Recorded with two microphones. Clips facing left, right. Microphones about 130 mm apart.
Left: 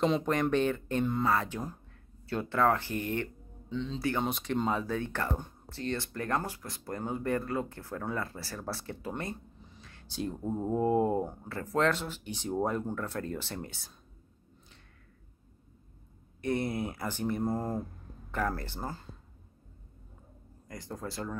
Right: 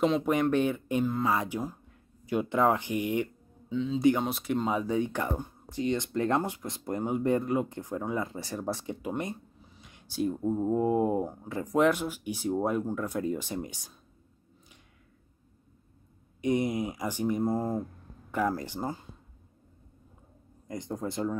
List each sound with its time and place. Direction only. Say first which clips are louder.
0.0 s speech: right 2 dB; 5° right (ahead or behind)
16.3 s speech: right 4 dB; 15° right (ahead or behind)
20.6 s speech: right 6 dB; 20° right (ahead or behind)